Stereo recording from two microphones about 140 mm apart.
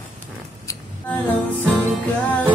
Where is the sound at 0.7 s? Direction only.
20° left (ahead or behind).